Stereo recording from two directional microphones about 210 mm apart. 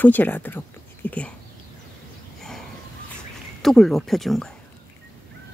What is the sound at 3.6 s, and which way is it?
Speech, centre (ahead or behind).